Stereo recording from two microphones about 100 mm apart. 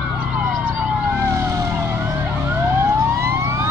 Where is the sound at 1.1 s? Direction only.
30° right (ahead or behind).